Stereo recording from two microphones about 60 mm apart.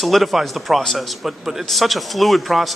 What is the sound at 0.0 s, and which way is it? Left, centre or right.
A man's voice, centre.